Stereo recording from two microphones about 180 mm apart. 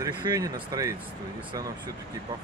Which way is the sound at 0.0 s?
20° right (ahead or behind).